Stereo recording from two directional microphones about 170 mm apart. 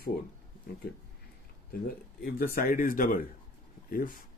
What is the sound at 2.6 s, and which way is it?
Speech, 55° left (ahead or behind).